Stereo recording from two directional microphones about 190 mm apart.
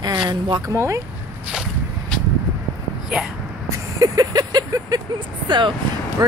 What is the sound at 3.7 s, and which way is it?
Vehicle, 20° right (ahead or behind).